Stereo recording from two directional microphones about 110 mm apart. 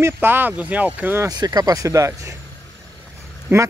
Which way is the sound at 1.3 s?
35° right (ahead or behind).